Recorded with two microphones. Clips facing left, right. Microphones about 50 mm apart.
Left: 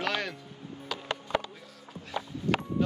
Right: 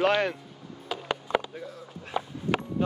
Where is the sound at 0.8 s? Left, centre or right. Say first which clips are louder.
Right 3 dB; right.